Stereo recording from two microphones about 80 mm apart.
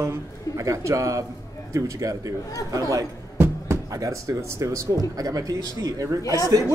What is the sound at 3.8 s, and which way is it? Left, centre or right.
Speech, right.